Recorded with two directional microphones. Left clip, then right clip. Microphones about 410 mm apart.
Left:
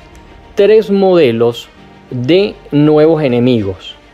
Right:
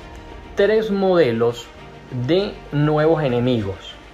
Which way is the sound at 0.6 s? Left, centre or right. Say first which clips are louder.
Left 9 dB; left.